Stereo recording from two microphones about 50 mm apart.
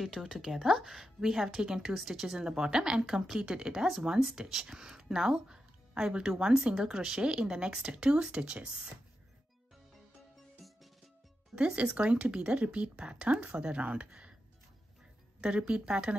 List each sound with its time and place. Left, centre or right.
0.0 s a woman's voice: centre
10.6 s music: centre
11.5 s speech: right
15.4 s speech: centre